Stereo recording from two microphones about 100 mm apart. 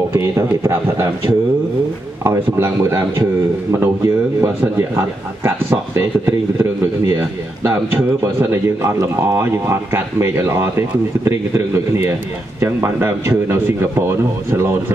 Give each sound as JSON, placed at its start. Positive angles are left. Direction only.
{"t": 0.1, "sound": "a man's voice", "side_deg": -30}